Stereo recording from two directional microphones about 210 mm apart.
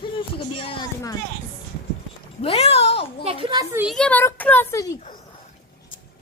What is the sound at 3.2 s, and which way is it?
Speech, 25° right (ahead or behind).